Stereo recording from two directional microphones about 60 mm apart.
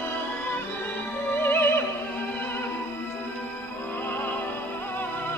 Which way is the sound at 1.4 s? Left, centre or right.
Left.